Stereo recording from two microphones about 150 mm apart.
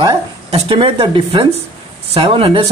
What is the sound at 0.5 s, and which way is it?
Speech, 40° right (ahead or behind).